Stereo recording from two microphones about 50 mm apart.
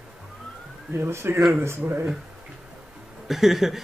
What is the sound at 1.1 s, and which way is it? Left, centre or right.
Speech, right.